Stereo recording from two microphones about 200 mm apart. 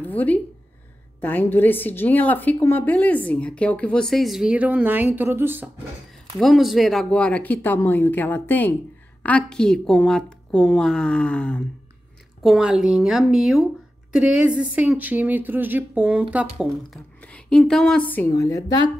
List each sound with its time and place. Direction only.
0.0 s a woman's voice: 10° left (ahead or behind); by 5.7 s 10° right (ahead or behind)
6.3 s a woman's voice: centre (ahead or behind); by 18.9 s 20° left (ahead or behind)